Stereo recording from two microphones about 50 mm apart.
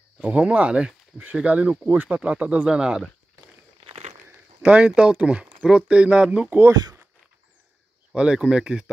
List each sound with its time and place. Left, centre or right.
0.2 s speech: right
2.7 s speech: centre
4.6 s speech: right
6.5 s speech: right
8.1 s speech: centre